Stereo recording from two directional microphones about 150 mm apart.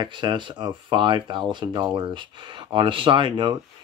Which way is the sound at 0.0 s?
30° right (ahead or behind).